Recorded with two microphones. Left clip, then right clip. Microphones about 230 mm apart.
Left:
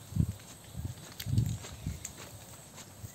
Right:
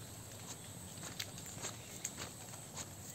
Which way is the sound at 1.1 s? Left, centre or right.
Centre.